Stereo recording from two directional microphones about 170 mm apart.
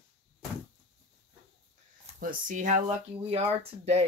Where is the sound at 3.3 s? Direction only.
35° right (ahead or behind).